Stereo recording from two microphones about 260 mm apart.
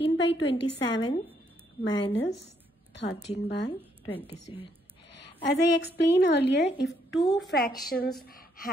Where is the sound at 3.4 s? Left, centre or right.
Left.